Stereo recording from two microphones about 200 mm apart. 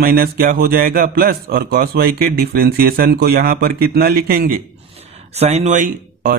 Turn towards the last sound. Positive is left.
turn(degrees=-40)  # may be behind; listen again after turning